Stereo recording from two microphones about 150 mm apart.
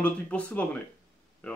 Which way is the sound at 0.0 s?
10° left (ahead or behind).